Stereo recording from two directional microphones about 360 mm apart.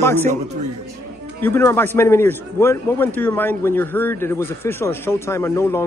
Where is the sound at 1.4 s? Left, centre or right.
Centre.